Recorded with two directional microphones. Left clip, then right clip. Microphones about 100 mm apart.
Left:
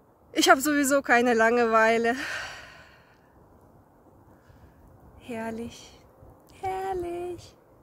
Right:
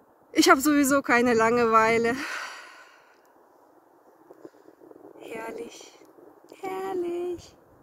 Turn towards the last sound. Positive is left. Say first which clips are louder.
# right 3 dB
turn(degrees=40)  # may be behind; listen again after turning